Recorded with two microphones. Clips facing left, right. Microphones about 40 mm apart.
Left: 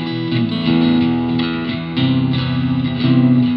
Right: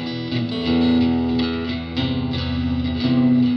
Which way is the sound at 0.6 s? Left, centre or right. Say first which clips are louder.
Left 2 dB; left.